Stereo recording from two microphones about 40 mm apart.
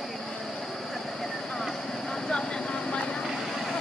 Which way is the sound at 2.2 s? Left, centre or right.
Centre.